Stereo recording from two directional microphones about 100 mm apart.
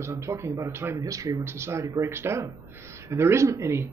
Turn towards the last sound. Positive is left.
turn(degrees=-30)  # may be behind; listen again after turning